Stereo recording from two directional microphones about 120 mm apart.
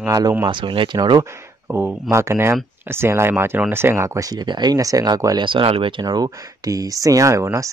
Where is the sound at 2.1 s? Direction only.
20° right (ahead or behind).